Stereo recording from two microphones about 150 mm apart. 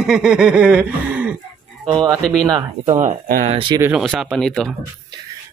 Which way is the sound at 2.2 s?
5° left (ahead or behind).